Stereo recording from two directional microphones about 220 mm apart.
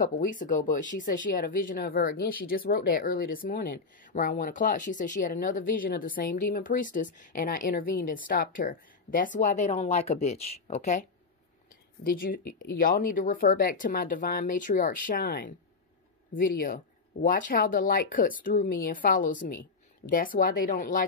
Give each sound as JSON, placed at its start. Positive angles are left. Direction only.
{"t": 0.0, "sound": "speech", "side_deg": 35}